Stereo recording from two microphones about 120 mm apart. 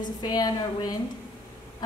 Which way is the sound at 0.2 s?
35° left (ahead or behind).